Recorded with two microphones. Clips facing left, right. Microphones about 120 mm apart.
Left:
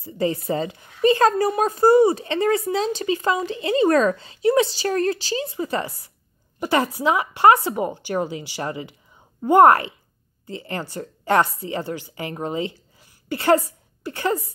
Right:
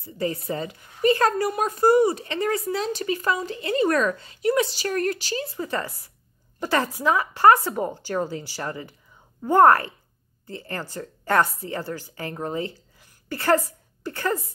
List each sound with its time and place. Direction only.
0.2 s a woman's voice: 25° left (ahead or behind)